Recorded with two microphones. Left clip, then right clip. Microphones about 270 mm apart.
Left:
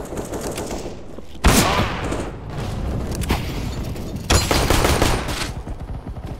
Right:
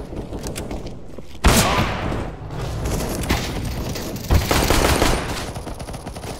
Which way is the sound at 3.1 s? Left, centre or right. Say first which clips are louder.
Even; centre.